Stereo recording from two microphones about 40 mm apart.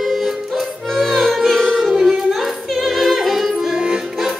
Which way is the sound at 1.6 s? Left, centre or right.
Centre.